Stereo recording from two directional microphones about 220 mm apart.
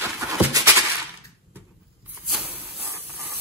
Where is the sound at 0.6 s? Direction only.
15° right (ahead or behind).